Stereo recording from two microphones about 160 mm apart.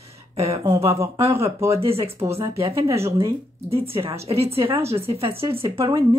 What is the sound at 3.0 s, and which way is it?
Speech, 20° right (ahead or behind).